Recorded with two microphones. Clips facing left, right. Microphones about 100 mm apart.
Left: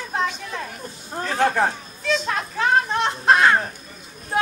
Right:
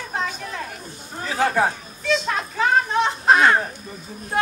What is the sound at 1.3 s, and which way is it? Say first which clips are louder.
Children playing: even; 5° right (ahead or behind).